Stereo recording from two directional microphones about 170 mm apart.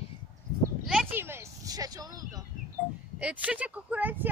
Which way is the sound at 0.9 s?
10° right (ahead or behind).